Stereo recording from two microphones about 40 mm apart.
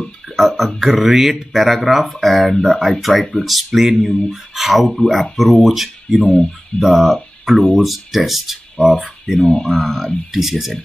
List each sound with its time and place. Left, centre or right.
0.4 s speech: centre
9.3 s speech: centre
9.7 s speech: centre